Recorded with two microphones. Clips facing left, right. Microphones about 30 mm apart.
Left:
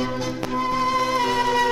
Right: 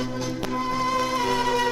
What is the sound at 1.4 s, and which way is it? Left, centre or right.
Music, centre.